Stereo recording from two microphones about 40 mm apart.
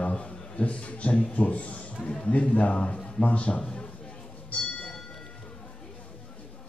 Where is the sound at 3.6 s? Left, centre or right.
Left.